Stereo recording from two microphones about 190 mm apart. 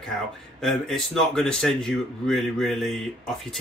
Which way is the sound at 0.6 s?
Centre (ahead or behind).